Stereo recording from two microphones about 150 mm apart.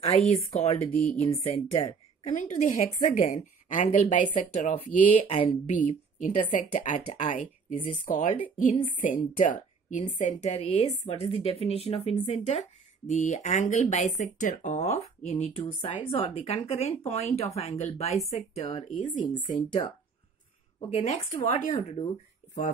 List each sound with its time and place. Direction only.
0.3 s speech: 40° left (ahead or behind)
5.8 s a woman's voice: 60° left (ahead or behind)
19.1 s speech: 30° left (ahead or behind)
20.9 s speech: 50° left (ahead or behind)